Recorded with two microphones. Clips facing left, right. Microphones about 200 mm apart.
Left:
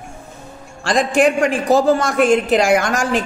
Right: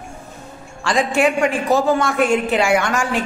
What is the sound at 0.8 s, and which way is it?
A man's voice, 40° left (ahead or behind).